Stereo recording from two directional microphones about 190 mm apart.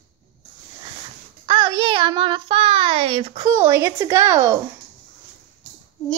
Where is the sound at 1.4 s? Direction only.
25° right (ahead or behind).